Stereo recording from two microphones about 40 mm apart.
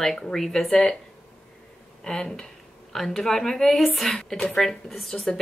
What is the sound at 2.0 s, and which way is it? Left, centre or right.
Speech, centre.